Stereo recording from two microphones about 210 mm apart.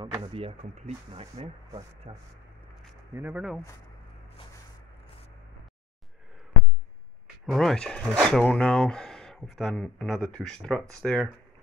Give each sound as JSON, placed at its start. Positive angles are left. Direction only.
{"t": 0.0, "sound": "speech", "side_deg": -25}
{"t": 3.2, "sound": "speech", "side_deg": -10}
{"t": 7.4, "sound": "speech", "side_deg": 0}